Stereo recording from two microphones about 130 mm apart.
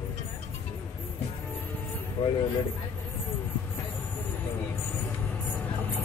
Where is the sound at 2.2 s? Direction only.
40° left (ahead or behind).